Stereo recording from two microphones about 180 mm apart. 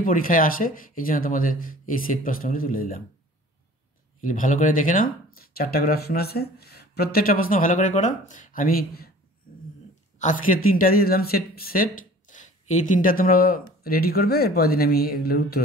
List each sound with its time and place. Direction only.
0.0 s speech: 50° left (ahead or behind)
4.2 s speech: 45° left (ahead or behind)
10.1 s speech: 45° left (ahead or behind)